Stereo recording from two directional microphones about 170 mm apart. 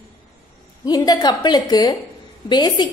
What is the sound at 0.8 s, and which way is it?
A woman's voice, 25° left (ahead or behind).